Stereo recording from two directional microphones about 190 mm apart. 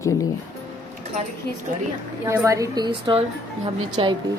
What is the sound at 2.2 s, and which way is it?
A woman's voice, 15° right (ahead or behind).